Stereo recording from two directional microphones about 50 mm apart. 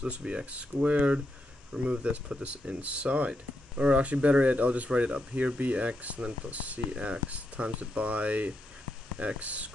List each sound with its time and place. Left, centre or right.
0.0 s speech: right